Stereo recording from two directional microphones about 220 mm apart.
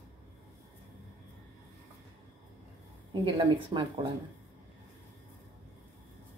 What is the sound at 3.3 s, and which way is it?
Speech, 25° right (ahead or behind).